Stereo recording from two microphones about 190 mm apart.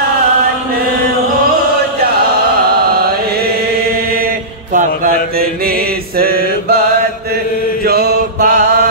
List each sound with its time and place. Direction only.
2.9 s chant: 55° right (ahead or behind)
4.7 s mantra: 50° right (ahead or behind)
7.8 s mantra: 55° right (ahead or behind)